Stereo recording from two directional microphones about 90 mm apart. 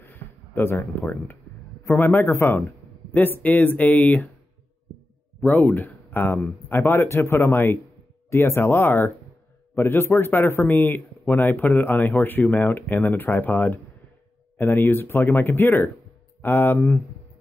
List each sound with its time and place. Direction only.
0.0 s a sound: 25° left (ahead or behind)
1.9 s a man's voice: 25° left (ahead or behind)
5.4 s a man's voice: 20° left (ahead or behind)